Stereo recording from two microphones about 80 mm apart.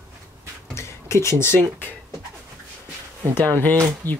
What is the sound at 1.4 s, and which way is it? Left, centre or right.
Speech, left.